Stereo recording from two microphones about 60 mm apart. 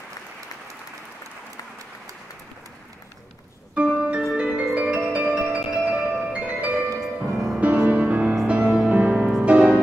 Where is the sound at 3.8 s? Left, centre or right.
Centre.